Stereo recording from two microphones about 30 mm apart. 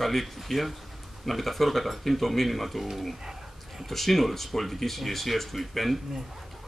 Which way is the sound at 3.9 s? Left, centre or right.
Centre.